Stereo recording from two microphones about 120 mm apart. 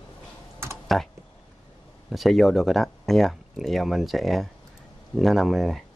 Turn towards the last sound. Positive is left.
turn(degrees=0)  # may be behind; listen again after turning